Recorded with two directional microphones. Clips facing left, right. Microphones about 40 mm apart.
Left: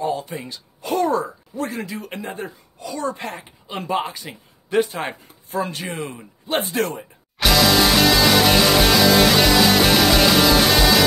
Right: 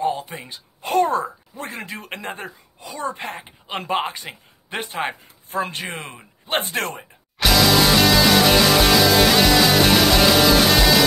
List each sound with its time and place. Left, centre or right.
0.0 s a man's voice: right
2.8 s speech: right
3.3 s a man's voice: right
7.3 s music: centre